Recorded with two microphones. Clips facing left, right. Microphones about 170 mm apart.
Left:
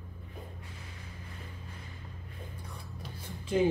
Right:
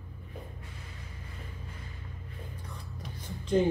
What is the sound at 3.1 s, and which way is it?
Music, 10° left (ahead or behind).